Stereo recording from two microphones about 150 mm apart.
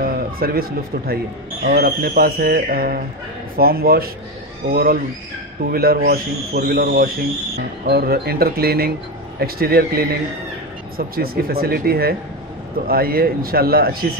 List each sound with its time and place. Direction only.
0.0 s speech: 80° right